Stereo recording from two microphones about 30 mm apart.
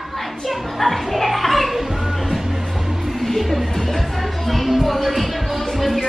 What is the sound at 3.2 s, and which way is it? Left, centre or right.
Music, centre.